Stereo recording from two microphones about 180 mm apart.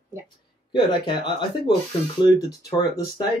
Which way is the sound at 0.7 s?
25° left (ahead or behind).